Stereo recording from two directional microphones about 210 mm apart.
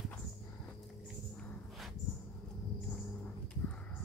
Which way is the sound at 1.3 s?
5° left (ahead or behind).